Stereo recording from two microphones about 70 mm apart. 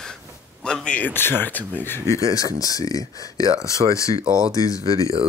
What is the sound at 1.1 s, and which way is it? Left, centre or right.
Speech, left.